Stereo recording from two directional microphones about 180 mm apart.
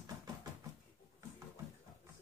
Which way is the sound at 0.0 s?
20° right (ahead or behind).